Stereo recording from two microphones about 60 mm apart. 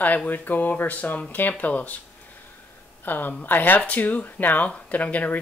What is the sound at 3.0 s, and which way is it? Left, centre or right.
A woman's voice, left.